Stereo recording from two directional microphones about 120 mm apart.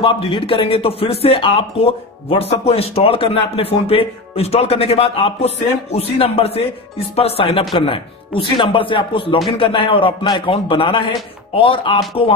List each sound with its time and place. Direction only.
0.0 s speech: 45° left (ahead or behind)